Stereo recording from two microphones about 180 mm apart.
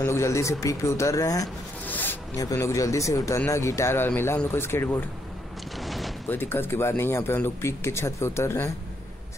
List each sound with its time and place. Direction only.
0.0 s speech: 15° left (ahead or behind)
5.8 s a sound: centre (ahead or behind)
6.2 s speech: 10° left (ahead or behind)